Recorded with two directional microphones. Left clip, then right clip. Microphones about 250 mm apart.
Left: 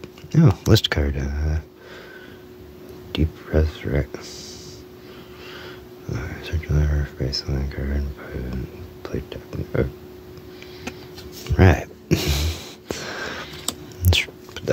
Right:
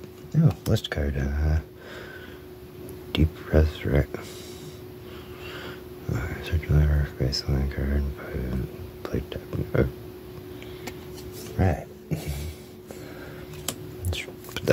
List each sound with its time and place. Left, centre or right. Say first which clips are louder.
0.3 s speech: left 8 dB; left
1.1 s speech: left 1 dB; centre
3.1 s speech: left 1 dB; centre
5.5 s speech: even; centre
11.5 s a sound: left 9 dB; left